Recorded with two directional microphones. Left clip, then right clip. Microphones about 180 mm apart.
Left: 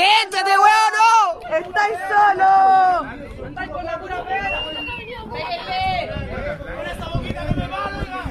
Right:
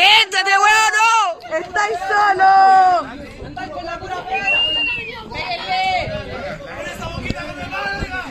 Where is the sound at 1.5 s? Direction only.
50° right (ahead or behind).